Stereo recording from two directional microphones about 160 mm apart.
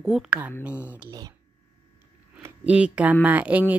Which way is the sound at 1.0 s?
25° right (ahead or behind).